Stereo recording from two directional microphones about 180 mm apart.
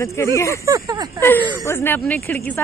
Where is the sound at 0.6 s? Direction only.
20° right (ahead or behind).